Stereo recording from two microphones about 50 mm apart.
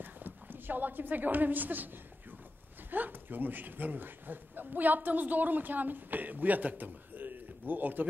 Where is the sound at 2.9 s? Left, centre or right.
Right.